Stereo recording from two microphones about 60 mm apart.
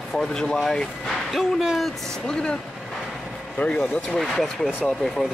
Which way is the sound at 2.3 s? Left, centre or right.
Centre.